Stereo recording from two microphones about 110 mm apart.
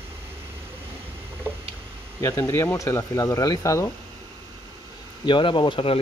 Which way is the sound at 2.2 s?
25° left (ahead or behind).